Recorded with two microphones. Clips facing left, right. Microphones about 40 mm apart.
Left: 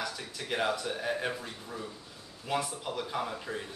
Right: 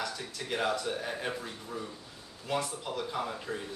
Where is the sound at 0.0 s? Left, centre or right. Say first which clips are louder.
Even; centre.